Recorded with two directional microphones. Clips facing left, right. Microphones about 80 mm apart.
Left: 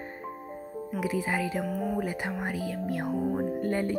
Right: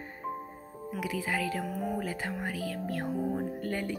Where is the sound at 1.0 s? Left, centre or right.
Left.